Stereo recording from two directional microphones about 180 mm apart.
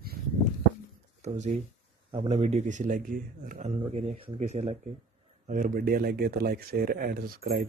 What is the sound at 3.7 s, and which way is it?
A man's voice, 30° right (ahead or behind).